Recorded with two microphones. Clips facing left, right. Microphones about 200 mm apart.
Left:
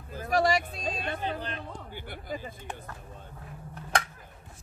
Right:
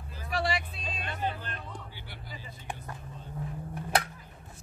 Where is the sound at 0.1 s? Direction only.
45° left (ahead or behind).